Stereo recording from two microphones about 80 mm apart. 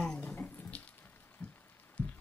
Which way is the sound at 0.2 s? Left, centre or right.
Left.